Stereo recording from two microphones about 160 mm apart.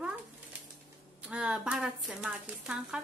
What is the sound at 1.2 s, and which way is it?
Speech, 5° right (ahead or behind).